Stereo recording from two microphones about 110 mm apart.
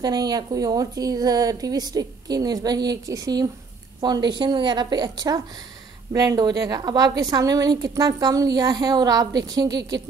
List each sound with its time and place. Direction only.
0.0 s a woman's voice: 35° right (ahead or behind)